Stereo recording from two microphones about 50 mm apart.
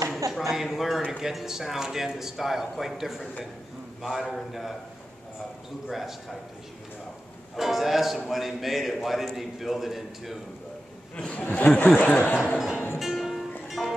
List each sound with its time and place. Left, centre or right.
0.1 s a man's voice: centre
5.9 s a man's voice: centre
7.5 s a man's voice: centre
11.1 s speech: left
12.1 s speech: left
12.5 s speech: centre
13.0 s music: centre